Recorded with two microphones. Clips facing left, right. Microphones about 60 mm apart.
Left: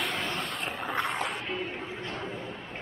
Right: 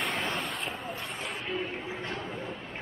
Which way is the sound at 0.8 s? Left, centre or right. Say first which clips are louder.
Left 7 dB; left.